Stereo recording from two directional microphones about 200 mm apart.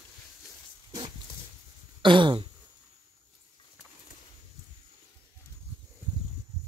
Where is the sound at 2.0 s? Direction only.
25° right (ahead or behind).